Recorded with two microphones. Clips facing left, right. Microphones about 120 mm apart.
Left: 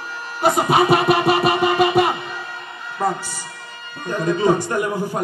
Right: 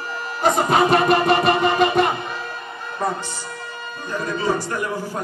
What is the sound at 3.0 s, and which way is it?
Speech, 5° left (ahead or behind).